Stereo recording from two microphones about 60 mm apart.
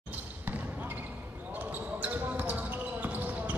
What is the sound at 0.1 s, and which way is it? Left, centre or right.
Basketball bounce, right.